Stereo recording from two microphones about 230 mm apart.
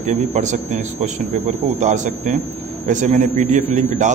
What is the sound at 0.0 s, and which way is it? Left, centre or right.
A man's voice, right.